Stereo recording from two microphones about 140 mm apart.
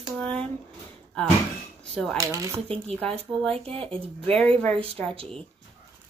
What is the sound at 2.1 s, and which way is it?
Speech, 25° right (ahead or behind).